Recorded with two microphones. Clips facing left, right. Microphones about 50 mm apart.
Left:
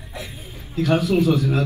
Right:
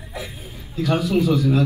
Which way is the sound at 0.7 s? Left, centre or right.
Left.